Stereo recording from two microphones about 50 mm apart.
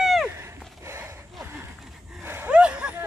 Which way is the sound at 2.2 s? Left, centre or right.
Right.